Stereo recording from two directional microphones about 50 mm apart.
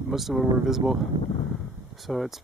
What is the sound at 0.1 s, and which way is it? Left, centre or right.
Speech, centre.